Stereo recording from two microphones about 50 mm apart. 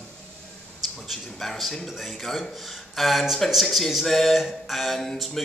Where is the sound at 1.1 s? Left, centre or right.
Centre.